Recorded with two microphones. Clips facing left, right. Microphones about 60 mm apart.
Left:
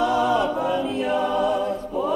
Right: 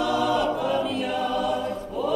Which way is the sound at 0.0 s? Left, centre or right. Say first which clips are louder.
Left 3 dB; left.